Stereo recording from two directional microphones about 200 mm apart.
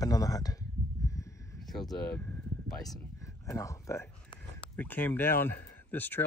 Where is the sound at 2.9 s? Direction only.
15° left (ahead or behind).